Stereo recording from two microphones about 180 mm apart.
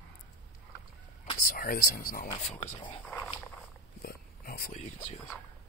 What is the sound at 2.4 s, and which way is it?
Speech, 40° left (ahead or behind).